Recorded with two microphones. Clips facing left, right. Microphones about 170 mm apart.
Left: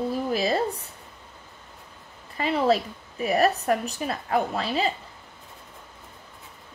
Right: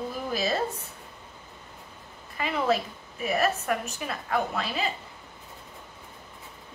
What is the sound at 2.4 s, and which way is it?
A woman's voice, 35° left (ahead or behind).